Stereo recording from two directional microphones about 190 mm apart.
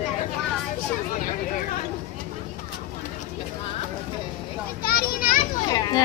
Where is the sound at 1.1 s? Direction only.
45° left (ahead or behind).